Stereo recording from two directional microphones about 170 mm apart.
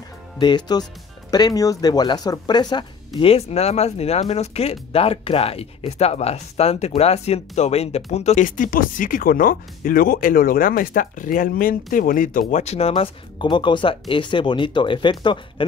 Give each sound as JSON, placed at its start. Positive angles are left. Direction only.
{"t": 0.4, "sound": "speech", "side_deg": 25}
{"t": 3.2, "sound": "speech", "side_deg": 35}